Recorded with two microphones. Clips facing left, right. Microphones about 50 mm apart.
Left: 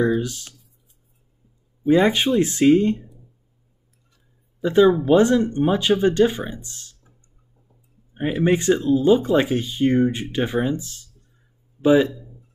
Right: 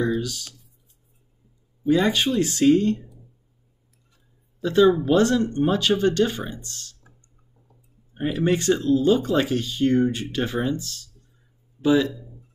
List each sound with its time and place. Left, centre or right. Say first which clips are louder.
0.0 s speech: left 4 dB; left
1.9 s speech: left 3 dB; left
4.6 s speech: left 2 dB; centre
8.1 s speech: left 3 dB; centre
12.1 s a sound: even; centre